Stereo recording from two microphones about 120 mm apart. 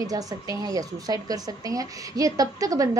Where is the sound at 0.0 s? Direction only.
30° right (ahead or behind).